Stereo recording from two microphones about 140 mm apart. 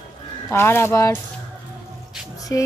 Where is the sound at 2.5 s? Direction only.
25° left (ahead or behind).